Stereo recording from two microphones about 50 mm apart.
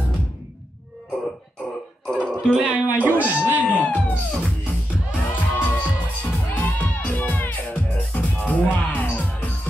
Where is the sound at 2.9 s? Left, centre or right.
Right.